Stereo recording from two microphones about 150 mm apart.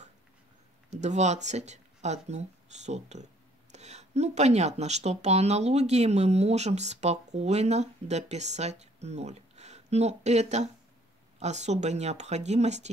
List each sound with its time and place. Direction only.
0.8 s speech: 50° right (ahead or behind)